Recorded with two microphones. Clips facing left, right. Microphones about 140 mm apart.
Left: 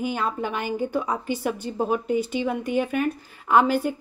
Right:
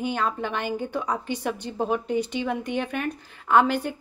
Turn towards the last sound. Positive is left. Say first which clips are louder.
# left 1 dB
turn(degrees=5)  # may be behind; listen again after turning